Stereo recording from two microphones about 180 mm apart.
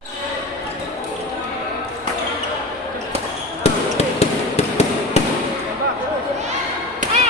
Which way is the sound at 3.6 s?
35° left (ahead or behind).